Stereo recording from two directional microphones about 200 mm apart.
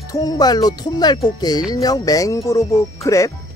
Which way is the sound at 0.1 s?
20° left (ahead or behind).